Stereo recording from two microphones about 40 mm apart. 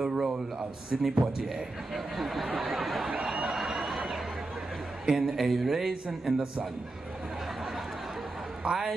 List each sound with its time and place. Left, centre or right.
0.0 s a sound: centre
1.0 s speech: centre
2.0 s speech: centre
2.6 s a sound: centre
5.0 s speech: centre
8.6 s speech: right